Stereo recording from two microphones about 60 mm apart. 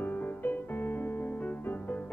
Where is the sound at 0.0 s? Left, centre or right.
Left.